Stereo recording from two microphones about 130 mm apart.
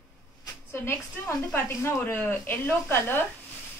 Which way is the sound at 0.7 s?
15° left (ahead or behind).